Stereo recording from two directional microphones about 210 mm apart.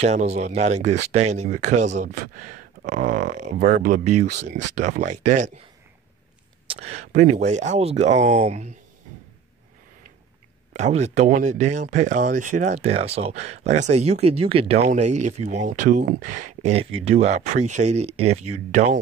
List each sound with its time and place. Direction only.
0.0 s speech: 35° right (ahead or behind)
6.7 s speech: 30° right (ahead or behind)
10.7 s speech: 35° right (ahead or behind)